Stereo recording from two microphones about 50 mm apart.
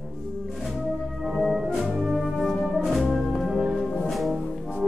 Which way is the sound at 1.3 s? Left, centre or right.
Centre.